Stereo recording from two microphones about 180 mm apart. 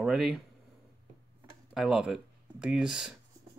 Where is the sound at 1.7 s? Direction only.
5° right (ahead or behind).